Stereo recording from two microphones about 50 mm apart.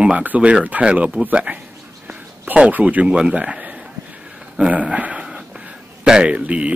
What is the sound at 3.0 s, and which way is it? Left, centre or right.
Speech, centre.